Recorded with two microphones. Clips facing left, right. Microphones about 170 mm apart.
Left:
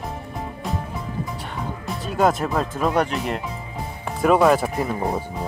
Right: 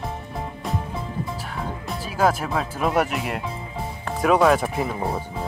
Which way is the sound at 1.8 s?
Centre (ahead or behind).